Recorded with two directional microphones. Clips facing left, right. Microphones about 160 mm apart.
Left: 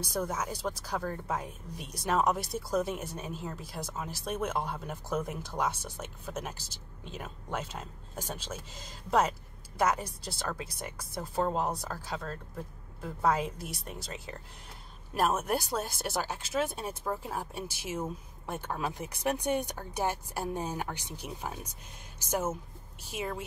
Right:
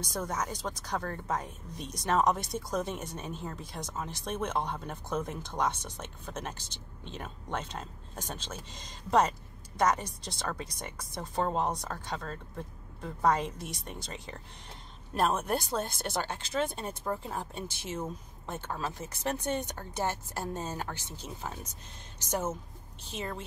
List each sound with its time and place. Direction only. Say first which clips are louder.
0.0 s speech: left 1 dB; 5° left (ahead or behind)